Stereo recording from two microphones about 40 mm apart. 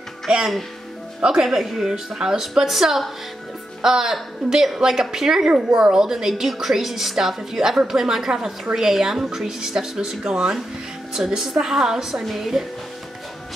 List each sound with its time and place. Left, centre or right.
0.3 s a woman's voice: centre